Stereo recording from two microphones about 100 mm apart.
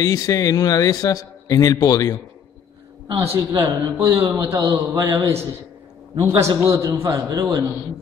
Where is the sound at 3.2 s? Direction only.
35° right (ahead or behind).